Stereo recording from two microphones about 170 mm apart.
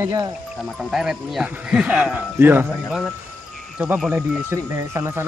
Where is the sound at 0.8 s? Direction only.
Centre (ahead or behind).